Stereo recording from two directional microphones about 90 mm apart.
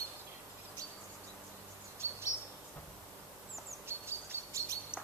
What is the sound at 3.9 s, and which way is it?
Bird, 30° right (ahead or behind).